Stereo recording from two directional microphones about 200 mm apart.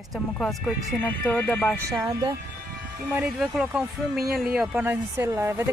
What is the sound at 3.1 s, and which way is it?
Speech, 5° right (ahead or behind).